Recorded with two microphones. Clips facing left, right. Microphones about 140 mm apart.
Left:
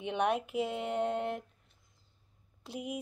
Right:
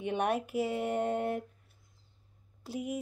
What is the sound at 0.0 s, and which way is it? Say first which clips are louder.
Speech: even; 5° right (ahead or behind).